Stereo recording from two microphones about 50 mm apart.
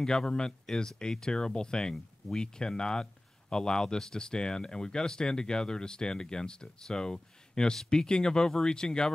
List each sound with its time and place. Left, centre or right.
0.0 s speech: centre